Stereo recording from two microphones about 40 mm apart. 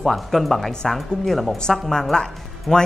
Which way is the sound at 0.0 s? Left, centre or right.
Centre.